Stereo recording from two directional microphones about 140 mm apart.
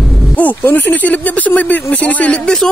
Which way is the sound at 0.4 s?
10° left (ahead or behind).